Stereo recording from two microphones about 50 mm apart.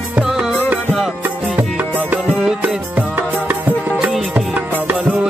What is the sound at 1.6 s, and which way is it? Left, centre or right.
Music, right.